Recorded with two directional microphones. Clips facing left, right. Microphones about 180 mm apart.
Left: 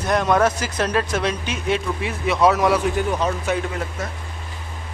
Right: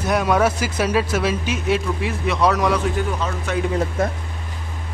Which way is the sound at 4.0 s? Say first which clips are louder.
Right 8 dB; 55° right (ahead or behind).